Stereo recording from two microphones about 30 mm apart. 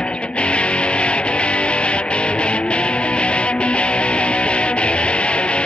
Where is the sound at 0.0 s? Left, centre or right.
Left.